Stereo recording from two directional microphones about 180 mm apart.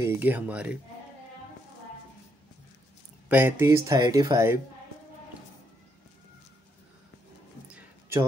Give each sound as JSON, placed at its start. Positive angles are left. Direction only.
{"t": 0.0, "sound": "speech", "side_deg": -10}
{"t": 3.3, "sound": "speech", "side_deg": -10}
{"t": 7.7, "sound": "a sound", "side_deg": -15}